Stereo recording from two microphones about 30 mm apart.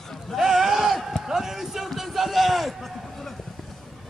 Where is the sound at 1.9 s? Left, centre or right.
Centre.